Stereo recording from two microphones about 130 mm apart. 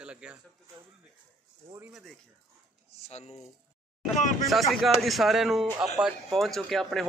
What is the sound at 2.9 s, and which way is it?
Speech, 55° left (ahead or behind).